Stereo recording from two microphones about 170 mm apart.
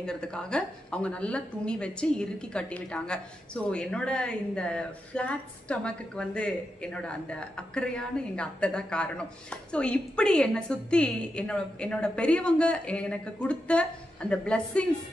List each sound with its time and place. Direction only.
0.0 s a woman's voice: 5° left (ahead or behind)